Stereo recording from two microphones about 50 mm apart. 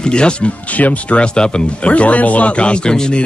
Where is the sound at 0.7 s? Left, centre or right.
Left.